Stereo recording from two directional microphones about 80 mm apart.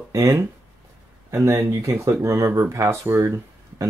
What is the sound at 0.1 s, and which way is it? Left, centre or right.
Speech, right.